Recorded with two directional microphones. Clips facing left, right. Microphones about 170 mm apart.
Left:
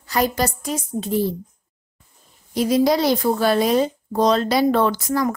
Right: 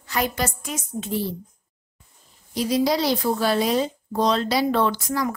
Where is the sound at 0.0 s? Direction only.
35° left (ahead or behind).